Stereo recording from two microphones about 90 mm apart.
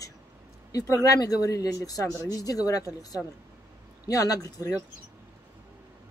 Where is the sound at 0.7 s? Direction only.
40° left (ahead or behind).